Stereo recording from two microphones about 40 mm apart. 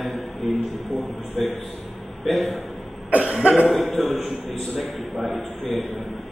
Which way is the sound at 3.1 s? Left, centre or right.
Right.